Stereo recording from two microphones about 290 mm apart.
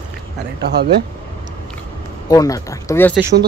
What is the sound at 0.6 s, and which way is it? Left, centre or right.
Speech, right.